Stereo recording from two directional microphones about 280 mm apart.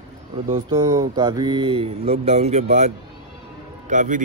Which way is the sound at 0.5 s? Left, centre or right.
Centre.